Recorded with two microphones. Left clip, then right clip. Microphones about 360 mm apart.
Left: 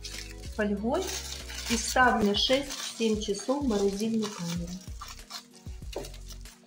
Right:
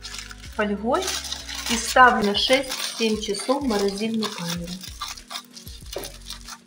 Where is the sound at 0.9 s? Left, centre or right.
Left.